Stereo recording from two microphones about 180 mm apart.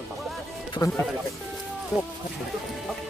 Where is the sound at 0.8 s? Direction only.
20° left (ahead or behind).